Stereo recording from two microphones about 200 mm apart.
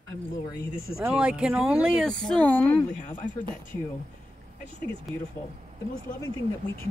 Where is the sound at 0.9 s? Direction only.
5° right (ahead or behind).